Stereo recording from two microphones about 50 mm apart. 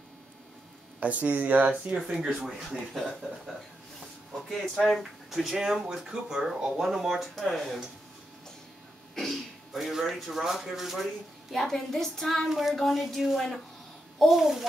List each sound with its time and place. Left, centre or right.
0.9 s speech: right
2.0 s speech: centre
4.5 s speech: centre
5.3 s speech: centre
9.1 s speech: centre
11.5 s speech: centre